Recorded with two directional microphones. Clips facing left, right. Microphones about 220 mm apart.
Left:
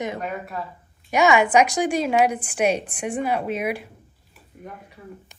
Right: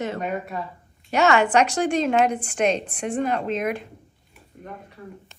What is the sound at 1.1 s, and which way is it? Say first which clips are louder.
A woman's voice: left 1 dB; 10° left (ahead or behind).